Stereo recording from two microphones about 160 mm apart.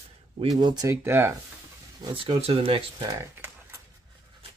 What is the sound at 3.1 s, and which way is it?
Speech, 15° right (ahead or behind).